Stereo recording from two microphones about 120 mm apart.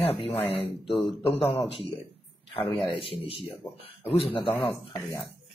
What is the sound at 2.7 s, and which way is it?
Speech, 45° left (ahead or behind).